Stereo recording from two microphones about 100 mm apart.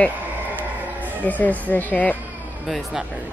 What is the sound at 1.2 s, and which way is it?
Speech, 15° left (ahead or behind).